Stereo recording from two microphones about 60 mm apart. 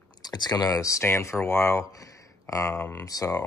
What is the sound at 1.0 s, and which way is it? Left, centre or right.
Speech, left.